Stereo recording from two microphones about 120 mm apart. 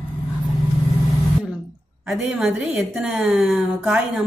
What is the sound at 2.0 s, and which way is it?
A woman's voice, centre (ahead or behind).